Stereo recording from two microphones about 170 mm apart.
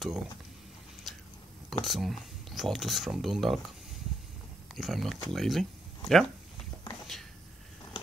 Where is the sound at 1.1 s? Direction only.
Centre (ahead or behind).